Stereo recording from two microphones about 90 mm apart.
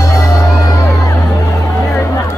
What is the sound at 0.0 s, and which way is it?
Music, 35° left (ahead or behind).